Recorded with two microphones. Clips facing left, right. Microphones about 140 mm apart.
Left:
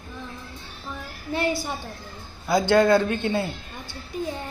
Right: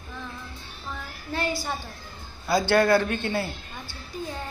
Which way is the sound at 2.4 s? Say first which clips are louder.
Left 2 dB; 20° left (ahead or behind).